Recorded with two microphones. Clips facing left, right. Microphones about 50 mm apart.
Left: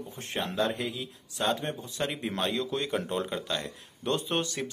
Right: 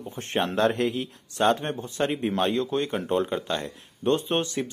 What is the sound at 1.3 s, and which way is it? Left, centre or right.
Speech, right.